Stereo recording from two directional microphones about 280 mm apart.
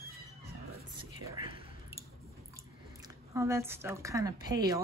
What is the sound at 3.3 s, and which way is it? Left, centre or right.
A woman's voice, centre.